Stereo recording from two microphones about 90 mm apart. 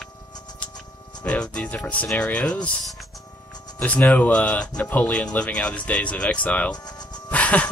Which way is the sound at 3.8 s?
15° left (ahead or behind).